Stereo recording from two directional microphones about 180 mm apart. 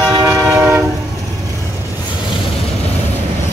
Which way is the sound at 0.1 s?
20° right (ahead or behind).